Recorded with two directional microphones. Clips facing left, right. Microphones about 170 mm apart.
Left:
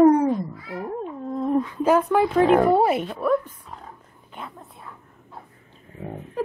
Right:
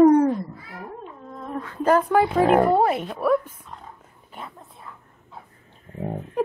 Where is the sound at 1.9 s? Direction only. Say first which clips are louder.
Right 2 dB; centre (ahead or behind).